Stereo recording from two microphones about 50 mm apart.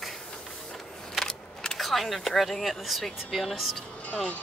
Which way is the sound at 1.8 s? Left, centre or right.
Centre.